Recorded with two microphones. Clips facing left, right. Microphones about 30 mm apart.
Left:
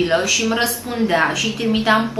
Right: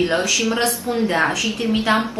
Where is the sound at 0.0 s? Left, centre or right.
Centre.